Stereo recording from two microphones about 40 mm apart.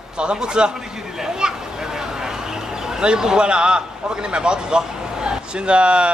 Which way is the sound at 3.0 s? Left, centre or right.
Centre.